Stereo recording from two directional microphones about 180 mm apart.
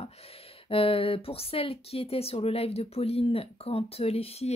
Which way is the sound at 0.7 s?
30° left (ahead or behind).